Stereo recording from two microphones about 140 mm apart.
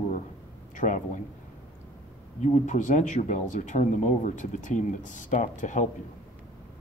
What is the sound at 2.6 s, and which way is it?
Speech, 65° left (ahead or behind).